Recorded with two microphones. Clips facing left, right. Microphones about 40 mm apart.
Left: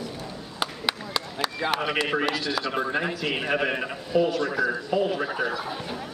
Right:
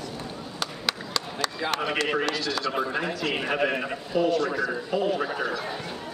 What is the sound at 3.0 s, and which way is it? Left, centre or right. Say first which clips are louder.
Speech: left 2 dB; centre.